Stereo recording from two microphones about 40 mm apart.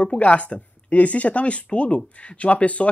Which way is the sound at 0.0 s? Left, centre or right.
Left.